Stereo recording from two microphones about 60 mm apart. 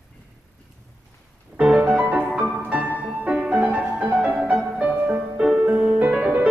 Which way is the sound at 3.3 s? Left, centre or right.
Centre.